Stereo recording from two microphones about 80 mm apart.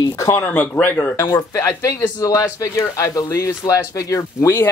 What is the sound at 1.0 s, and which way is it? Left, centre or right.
Speech, left.